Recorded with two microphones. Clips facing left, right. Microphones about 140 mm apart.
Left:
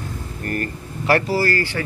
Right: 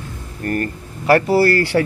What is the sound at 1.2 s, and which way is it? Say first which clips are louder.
Speech: right 6 dB; 65° right (ahead or behind).